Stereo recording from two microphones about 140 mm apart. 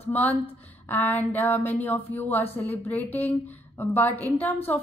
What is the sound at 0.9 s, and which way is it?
A woman's voice, 15° left (ahead or behind).